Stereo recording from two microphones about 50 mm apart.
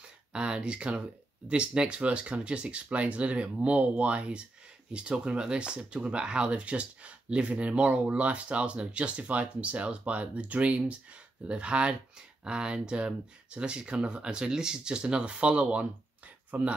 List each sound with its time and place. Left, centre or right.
0.3 s speech: right